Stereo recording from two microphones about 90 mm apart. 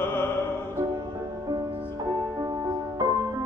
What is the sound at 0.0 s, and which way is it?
Music, 25° left (ahead or behind).